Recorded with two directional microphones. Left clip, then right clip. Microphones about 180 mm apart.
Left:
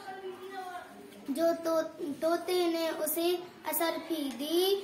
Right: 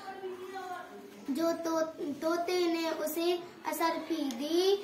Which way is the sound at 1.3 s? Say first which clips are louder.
Left 3 dB; 20° left (ahead or behind).